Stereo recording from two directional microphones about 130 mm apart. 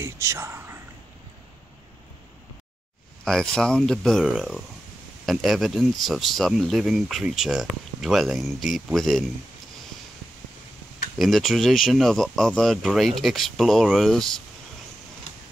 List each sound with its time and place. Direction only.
0.0 s speech: 20° right (ahead or behind)
3.3 s speech: 5° left (ahead or behind)
11.1 s speech: centre (ahead or behind)